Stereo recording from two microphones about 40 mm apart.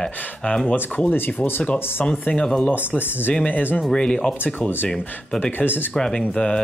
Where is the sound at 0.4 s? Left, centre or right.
Left.